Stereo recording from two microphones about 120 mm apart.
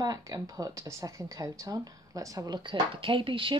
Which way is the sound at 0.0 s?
30° right (ahead or behind).